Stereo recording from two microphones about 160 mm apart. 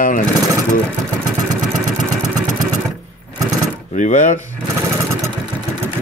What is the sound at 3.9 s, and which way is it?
Speech, 50° left (ahead or behind).